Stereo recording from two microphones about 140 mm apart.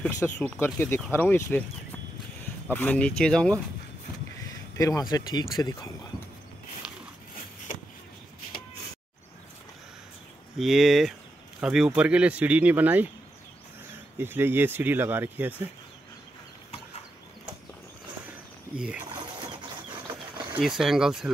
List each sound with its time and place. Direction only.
0.0 s speech: 10° left (ahead or behind)
2.7 s speech: 10° left (ahead or behind)
4.4 s a sound: 25° left (ahead or behind)
5.1 s speech: 25° left (ahead or behind)
6.8 s a sound: 5° right (ahead or behind)
10.6 s speech: centre (ahead or behind)
14.1 s speech: 15° right (ahead or behind)
18.8 s speech: 5° right (ahead or behind)
20.5 s speech: 5° right (ahead or behind)